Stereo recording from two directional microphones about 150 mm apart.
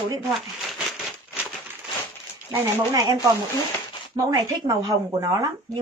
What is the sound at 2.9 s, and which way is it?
Speech, 25° right (ahead or behind).